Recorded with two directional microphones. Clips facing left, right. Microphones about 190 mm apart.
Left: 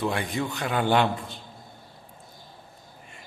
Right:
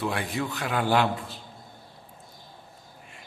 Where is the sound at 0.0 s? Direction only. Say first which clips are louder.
Left 1 dB; centre (ahead or behind).